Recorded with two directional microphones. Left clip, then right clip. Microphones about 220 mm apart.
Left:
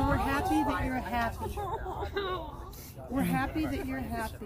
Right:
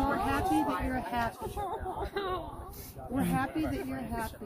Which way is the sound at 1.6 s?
55° right (ahead or behind).